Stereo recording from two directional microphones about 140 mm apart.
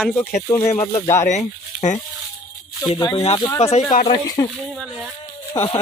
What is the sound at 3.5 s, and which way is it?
Speech, 50° left (ahead or behind).